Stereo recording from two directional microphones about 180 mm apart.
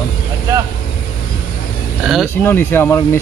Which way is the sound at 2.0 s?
Centre (ahead or behind).